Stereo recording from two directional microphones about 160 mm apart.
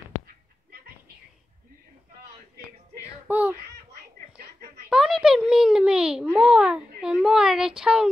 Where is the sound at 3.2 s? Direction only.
10° right (ahead or behind).